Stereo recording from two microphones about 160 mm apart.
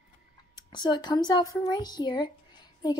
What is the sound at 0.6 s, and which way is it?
A woman's voice, 25° left (ahead or behind).